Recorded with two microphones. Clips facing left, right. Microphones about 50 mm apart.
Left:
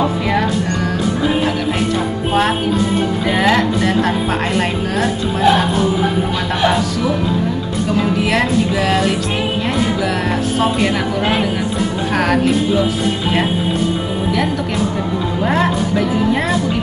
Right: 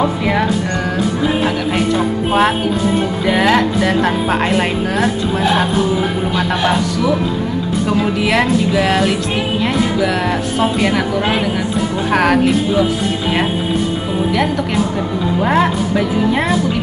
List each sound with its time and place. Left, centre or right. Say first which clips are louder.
0.2 s speech: right 1 dB; centre
3.3 s music: right 2 dB; centre
10.8 s music: right 1 dB; centre
12.1 s music: right 4 dB; centre
15.6 s speech: right 1 dB; centre